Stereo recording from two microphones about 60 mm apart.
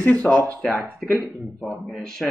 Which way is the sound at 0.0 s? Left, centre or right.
Left.